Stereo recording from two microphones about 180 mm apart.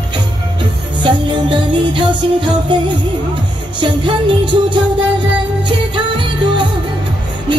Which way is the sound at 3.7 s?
25° right (ahead or behind).